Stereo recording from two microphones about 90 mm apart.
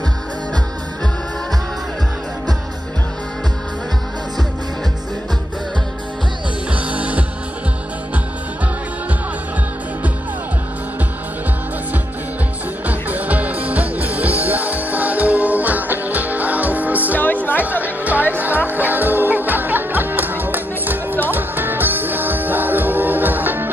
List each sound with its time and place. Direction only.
6.7 s music: 15° right (ahead or behind)
12.8 s music: 15° right (ahead or behind)
17.2 s music: 20° left (ahead or behind)
17.8 s music: 20° right (ahead or behind)